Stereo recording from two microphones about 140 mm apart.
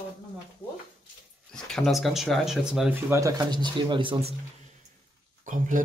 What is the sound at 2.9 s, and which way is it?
Speech, 20° right (ahead or behind).